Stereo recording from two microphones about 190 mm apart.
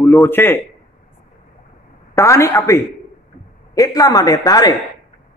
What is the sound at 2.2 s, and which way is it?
A woman's voice, 15° left (ahead or behind).